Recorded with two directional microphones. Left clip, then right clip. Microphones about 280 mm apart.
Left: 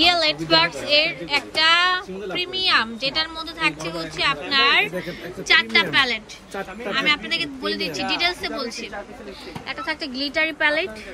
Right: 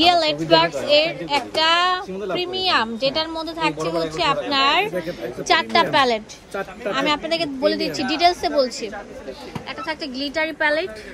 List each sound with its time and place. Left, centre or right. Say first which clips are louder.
0.0 s a woman's voice: right 2 dB; centre
9.7 s speech: left 1 dB; centre